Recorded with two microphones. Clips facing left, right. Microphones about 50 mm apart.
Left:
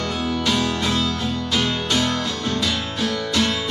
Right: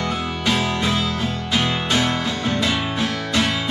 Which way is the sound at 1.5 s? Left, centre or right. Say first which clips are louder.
Right 2 dB; right.